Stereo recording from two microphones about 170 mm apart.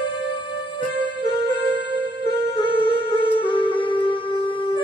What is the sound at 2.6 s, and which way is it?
Music, 30° left (ahead or behind).